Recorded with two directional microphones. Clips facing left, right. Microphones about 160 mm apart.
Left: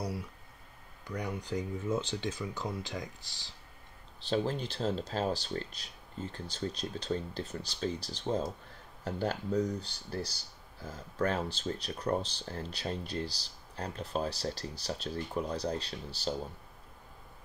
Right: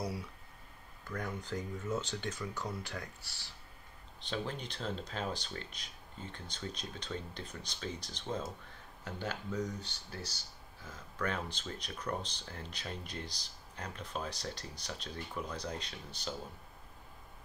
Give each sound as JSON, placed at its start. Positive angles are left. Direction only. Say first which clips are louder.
{"t": 1.0, "sound": "speech", "louder": "left 3 dB", "side_deg": 15}
{"t": 4.2, "sound": "speech", "louder": "left 7 dB", "side_deg": 35}